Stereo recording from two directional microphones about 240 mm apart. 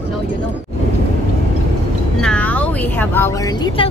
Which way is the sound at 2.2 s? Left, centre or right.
Centre.